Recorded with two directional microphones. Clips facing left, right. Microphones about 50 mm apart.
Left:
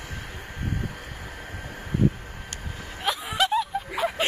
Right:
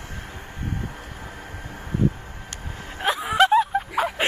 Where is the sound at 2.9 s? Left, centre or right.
Right.